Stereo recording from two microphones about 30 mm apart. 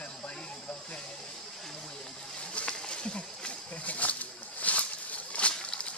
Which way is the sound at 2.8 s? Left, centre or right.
Left.